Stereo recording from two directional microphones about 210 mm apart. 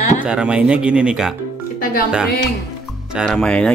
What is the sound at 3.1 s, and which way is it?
Speech, centre (ahead or behind).